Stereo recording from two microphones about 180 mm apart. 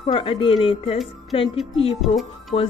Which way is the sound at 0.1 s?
30° left (ahead or behind).